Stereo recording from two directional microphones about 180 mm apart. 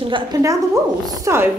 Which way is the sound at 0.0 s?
25° right (ahead or behind).